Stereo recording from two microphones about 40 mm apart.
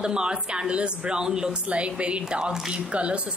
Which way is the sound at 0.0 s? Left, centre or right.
Right.